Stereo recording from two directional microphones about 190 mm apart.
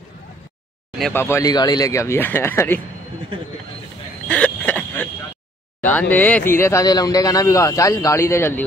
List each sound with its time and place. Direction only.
1.1 s a man's voice: 15° left (ahead or behind)
4.3 s a sound: 5° left (ahead or behind)
5.9 s a man's voice: 10° left (ahead or behind)